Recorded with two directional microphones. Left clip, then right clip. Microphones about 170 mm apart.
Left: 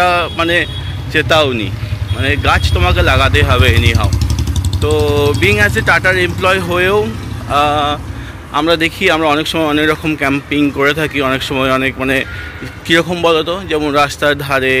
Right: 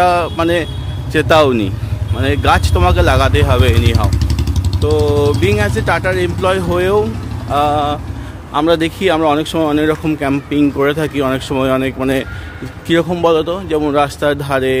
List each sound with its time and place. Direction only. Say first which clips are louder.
0.0 s speech: even; 25° right (ahead or behind)
4.8 s speech: even; 5° right (ahead or behind)